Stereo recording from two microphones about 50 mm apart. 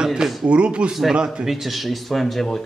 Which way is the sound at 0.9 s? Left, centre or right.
Centre.